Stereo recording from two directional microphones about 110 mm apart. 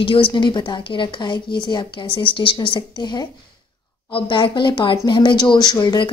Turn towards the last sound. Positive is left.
turn(degrees=40)  # may be behind; listen again after turning